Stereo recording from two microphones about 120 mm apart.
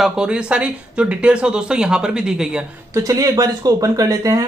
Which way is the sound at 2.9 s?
25° right (ahead or behind).